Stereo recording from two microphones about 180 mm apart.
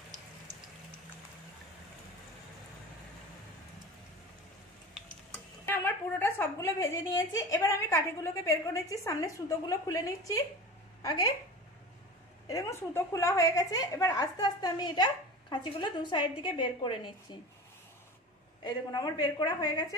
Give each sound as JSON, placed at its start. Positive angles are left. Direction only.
{"t": 5.7, "sound": "a woman's voice", "side_deg": 10}
{"t": 12.4, "sound": "a woman's voice", "side_deg": 15}
{"t": 18.6, "sound": "a woman's voice", "side_deg": 20}